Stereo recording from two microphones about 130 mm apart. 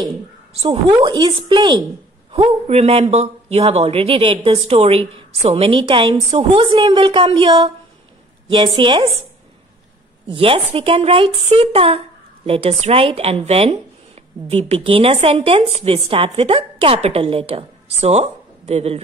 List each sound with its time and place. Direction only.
0.7 s a woman's voice: 35° right (ahead or behind)
2.3 s speech: 55° right (ahead or behind)
8.7 s a woman's voice: 40° right (ahead or behind)
10.3 s speech: 45° right (ahead or behind)